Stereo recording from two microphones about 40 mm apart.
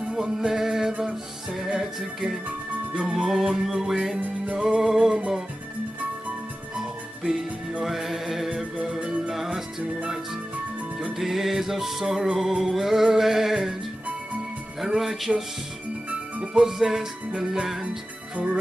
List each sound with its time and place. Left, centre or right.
0.1 s music: centre
7.8 s music: centre
11.1 s music: centre
14.8 s music: centre
16.5 s music: centre